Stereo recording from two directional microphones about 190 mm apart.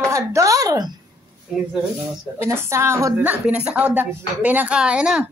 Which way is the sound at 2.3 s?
15° right (ahead or behind).